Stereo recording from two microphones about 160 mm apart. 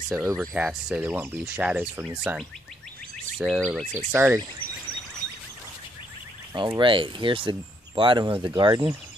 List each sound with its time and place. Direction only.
0.1 s speech: 20° right (ahead or behind)
0.4 s speech: 5° right (ahead or behind)
3.9 s speech: 15° right (ahead or behind)
6.8 s speech: 30° right (ahead or behind)